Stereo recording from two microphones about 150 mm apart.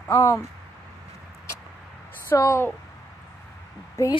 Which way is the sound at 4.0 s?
20° left (ahead or behind).